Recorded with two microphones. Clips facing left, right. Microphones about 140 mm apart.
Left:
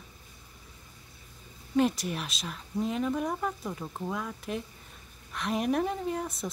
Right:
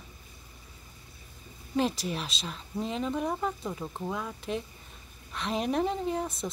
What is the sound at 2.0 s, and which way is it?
Speech, centre (ahead or behind).